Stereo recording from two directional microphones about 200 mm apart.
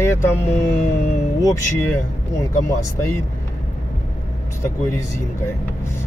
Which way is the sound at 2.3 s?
15° left (ahead or behind).